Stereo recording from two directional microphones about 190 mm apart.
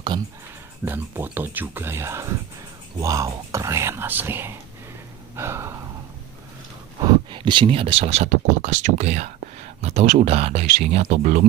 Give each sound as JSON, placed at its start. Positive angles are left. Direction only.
{"t": 0.8, "sound": "speech", "side_deg": -10}
{"t": 5.3, "sound": "gasp", "side_deg": -15}
{"t": 7.0, "sound": "speech", "side_deg": -25}